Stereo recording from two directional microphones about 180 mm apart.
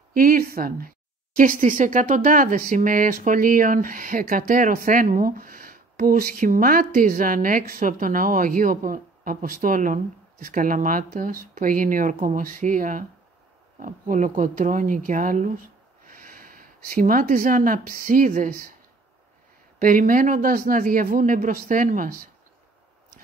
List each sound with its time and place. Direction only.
0.1 s speech: 55° right (ahead or behind)
19.8 s speech: 50° right (ahead or behind)